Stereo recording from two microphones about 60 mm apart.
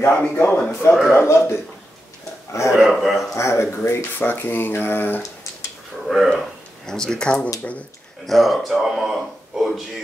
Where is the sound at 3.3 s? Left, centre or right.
Left.